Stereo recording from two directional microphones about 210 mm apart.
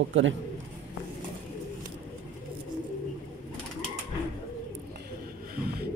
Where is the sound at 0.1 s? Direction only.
65° right (ahead or behind).